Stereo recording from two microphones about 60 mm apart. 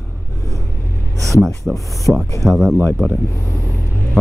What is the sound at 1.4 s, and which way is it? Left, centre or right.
Speech, centre.